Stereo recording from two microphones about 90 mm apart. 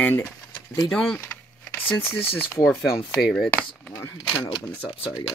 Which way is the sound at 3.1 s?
5° left (ahead or behind).